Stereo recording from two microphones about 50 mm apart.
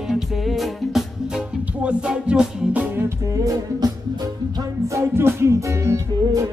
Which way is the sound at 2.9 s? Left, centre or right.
Right.